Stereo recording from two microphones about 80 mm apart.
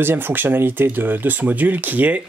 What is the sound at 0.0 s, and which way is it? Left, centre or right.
Speech, right.